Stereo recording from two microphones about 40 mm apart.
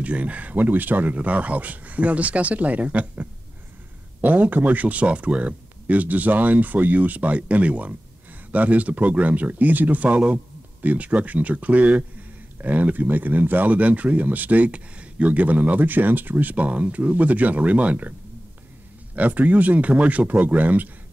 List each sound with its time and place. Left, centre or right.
0.0 s speech: right
19.1 s speech: right